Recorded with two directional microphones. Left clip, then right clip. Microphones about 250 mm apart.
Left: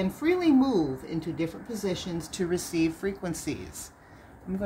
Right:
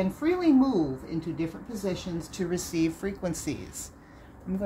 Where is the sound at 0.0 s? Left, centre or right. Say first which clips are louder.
Even; centre.